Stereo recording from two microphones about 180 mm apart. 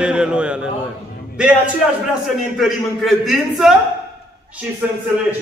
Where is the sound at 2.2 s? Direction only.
Centre (ahead or behind).